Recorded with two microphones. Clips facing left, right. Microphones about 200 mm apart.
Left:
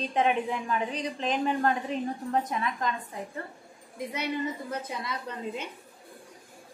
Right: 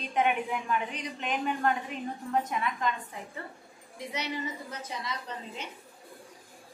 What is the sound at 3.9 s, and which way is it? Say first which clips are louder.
A woman's voice: left 4 dB; 50° left (ahead or behind).